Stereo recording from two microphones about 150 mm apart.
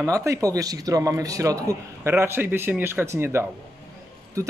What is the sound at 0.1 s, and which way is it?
Speech, 20° right (ahead or behind).